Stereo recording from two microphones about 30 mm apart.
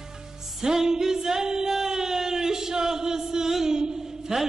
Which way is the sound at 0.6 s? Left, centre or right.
Centre.